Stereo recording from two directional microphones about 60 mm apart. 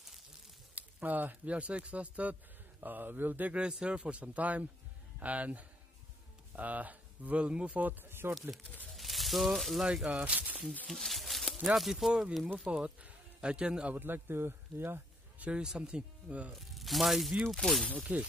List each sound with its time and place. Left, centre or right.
0.7 s speech: right
3.5 s speech: centre
8.0 s speech: right
8.9 s speech: centre
10.2 s speech: right
10.9 s speech: centre
13.9 s speech: right
15.3 s a sound: right
15.6 s speech: centre
16.5 s speech: centre
18.1 s speech: right